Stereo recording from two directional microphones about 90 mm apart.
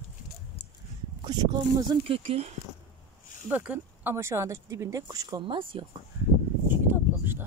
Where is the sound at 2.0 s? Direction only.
90° right.